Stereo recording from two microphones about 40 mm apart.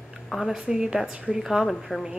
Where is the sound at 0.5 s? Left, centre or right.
Centre.